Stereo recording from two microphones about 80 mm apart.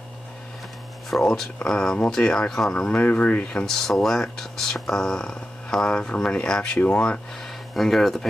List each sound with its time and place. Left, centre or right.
1.1 s speech: centre
7.7 s speech: centre